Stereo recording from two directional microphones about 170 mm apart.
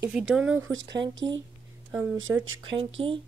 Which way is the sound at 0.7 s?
90° right.